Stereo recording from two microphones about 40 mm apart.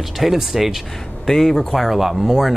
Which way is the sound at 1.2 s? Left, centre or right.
Centre.